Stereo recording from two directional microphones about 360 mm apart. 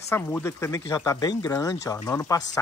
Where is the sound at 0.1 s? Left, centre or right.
Centre.